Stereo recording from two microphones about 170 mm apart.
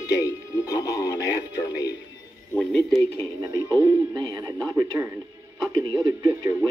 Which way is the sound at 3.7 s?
15° right (ahead or behind).